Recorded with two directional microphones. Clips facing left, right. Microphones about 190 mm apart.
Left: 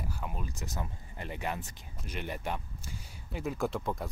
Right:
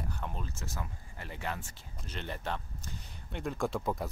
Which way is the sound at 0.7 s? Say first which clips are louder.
Left 3 dB; 20° left (ahead or behind).